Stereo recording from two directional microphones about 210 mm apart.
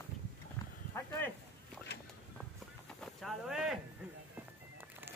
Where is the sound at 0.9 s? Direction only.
10° left (ahead or behind).